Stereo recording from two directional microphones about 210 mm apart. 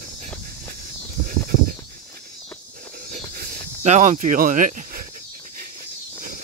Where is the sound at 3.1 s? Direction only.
45° right (ahead or behind).